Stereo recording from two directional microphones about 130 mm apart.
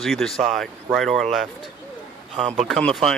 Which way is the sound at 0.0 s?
5° left (ahead or behind).